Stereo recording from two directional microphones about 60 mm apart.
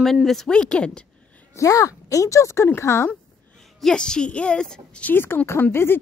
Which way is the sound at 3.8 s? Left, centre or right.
Centre.